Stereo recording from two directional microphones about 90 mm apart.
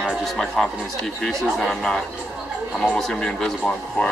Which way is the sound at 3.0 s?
5° left (ahead or behind).